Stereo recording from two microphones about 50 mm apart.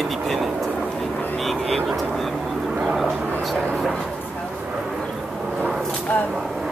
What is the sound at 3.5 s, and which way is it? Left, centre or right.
Speech, centre.